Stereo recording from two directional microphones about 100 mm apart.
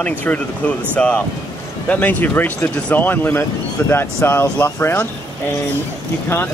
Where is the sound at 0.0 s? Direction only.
15° left (ahead or behind).